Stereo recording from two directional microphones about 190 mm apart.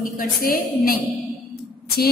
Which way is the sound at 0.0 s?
50° left (ahead or behind).